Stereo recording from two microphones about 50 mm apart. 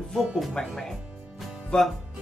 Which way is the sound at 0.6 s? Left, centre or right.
Centre.